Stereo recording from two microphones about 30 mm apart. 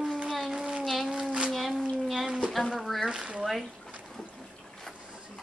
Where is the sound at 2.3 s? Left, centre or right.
Right.